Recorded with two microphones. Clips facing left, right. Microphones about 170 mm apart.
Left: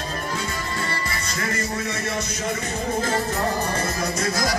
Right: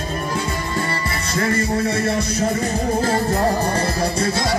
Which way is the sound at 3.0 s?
35° right (ahead or behind).